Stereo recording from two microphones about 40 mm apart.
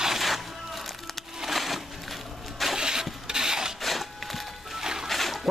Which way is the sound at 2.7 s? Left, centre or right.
Centre.